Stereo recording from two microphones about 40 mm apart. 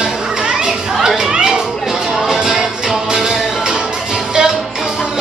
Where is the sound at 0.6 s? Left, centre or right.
Centre.